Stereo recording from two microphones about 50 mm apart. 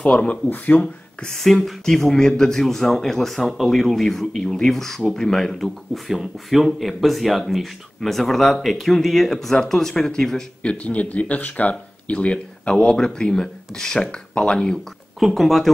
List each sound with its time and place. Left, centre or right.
0.0 s speech: left
1.2 s speech: centre
10.6 s speech: left
15.1 s speech: centre